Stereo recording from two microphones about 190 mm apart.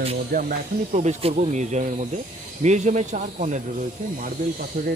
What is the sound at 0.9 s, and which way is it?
Speech, 40° right (ahead or behind).